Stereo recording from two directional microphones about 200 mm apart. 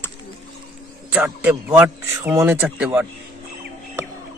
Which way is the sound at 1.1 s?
10° right (ahead or behind).